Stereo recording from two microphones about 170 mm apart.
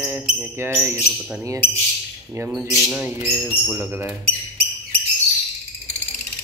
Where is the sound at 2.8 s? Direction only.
5° right (ahead or behind).